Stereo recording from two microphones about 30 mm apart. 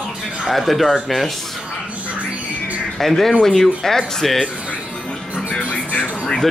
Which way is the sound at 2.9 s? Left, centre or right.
Centre.